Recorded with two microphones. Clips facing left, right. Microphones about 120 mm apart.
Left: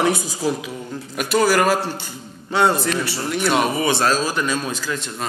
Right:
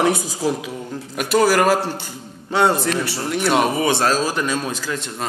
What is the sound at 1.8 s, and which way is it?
A man's voice, 30° right (ahead or behind).